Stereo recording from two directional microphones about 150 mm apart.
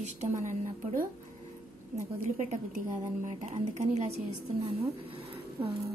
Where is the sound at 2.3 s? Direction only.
55° right (ahead or behind).